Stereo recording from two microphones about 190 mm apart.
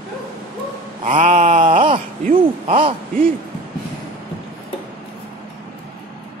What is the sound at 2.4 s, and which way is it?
Speech, 30° right (ahead or behind).